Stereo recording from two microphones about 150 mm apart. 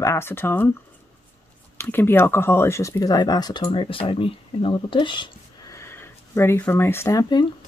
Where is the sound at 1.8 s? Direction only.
15° left (ahead or behind).